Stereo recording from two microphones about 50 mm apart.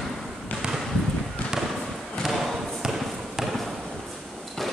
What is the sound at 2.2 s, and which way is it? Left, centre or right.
Basketball bounce, centre.